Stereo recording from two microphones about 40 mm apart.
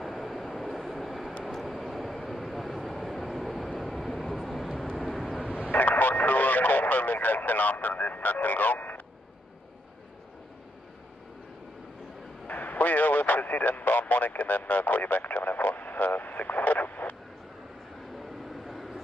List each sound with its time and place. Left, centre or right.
0.0 s vehicle: centre
5.7 s radio: left
12.4 s radio: left
18.2 s vehicle: centre